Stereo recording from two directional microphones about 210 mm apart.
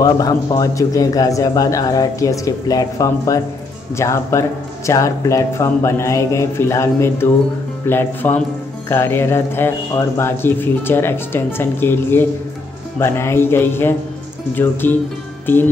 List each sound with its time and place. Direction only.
0.0 s speech: 15° left (ahead or behind)